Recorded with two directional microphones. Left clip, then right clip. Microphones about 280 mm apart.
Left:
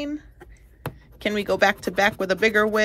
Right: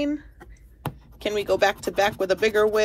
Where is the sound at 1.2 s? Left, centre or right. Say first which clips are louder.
Left 1 dB; left.